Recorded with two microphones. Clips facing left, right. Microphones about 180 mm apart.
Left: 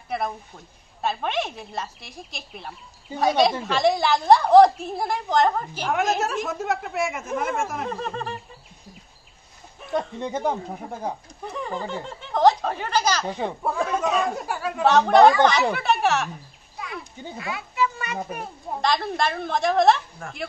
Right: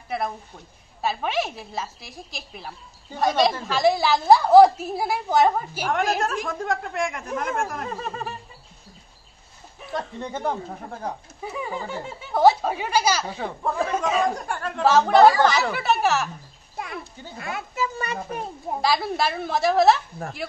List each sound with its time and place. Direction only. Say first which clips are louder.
0.1 s speech: even; centre (ahead or behind)
9.9 s speech: left 4 dB; 10° left (ahead or behind)
11.4 s speech: even; 5° right (ahead or behind)
13.4 s speech: even; 10° left (ahead or behind)
17.4 s a child's voice: left 2 dB; 50° right (ahead or behind)
17.9 s a child's voice: right 1 dB; 30° right (ahead or behind)
18.8 s speech: even; 5° right (ahead or behind)